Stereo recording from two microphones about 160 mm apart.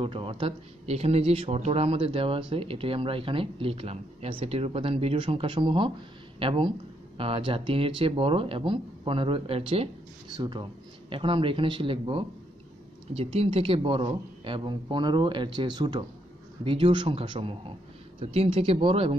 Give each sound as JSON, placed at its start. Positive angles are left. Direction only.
{"t": 0.0, "sound": "speech", "side_deg": -35}